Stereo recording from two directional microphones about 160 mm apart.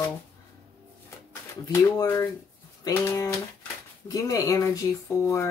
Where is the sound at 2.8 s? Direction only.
20° left (ahead or behind).